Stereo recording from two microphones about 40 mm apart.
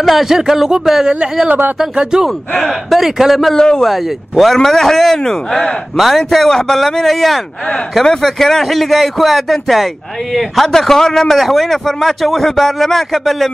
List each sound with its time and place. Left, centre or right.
0.0 s a man's voice: centre
2.5 s a man's voice: centre
3.5 s a man's voice: centre
3.8 s a man's voice: centre
10.7 s a man's voice: centre